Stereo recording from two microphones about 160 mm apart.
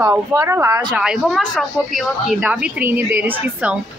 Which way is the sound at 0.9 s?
5° right (ahead or behind).